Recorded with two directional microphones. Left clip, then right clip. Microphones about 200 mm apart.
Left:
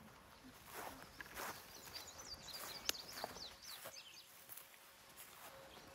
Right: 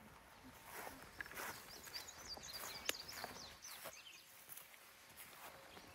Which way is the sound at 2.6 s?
Centre (ahead or behind).